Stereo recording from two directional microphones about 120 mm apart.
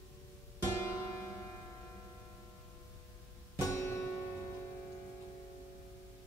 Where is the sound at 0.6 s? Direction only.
25° left (ahead or behind).